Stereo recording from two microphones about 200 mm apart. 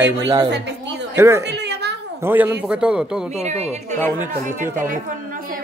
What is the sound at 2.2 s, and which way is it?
A man's voice, 10° right (ahead or behind).